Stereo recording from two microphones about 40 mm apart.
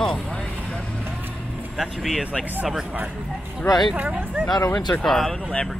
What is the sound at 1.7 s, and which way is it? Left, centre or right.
Speech, centre.